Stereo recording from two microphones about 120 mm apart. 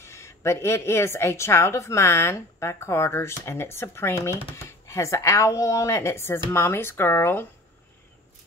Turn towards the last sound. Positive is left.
turn(degrees=15)  # may be behind; listen again after turning